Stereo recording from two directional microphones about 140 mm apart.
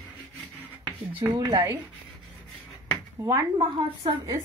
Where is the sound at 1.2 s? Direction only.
30° right (ahead or behind).